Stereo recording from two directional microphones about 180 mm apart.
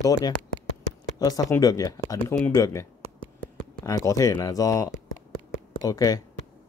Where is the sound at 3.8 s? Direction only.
20° left (ahead or behind).